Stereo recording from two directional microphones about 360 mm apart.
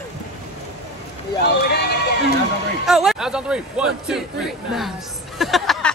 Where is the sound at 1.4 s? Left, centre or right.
Left.